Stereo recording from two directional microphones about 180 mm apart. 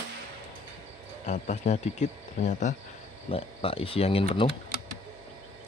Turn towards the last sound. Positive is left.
turn(degrees=30)  # may be behind; listen again after turning